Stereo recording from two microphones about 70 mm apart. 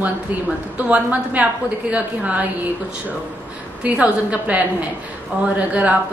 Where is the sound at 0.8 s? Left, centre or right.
Right.